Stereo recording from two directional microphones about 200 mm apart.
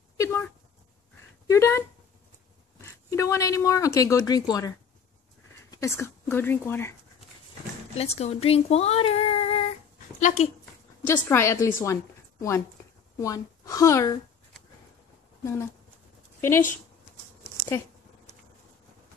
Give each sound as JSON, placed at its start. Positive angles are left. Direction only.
{"t": 0.2, "sound": "a sound", "side_deg": 10}
{"t": 1.5, "sound": "speech", "side_deg": 15}
{"t": 7.9, "sound": "speech", "side_deg": 30}
{"t": 10.6, "sound": "a woman's voice", "side_deg": 10}
{"t": 15.4, "sound": "speech", "side_deg": 15}